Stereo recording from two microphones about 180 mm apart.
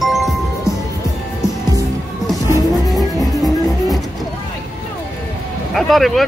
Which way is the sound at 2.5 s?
20° left (ahead or behind).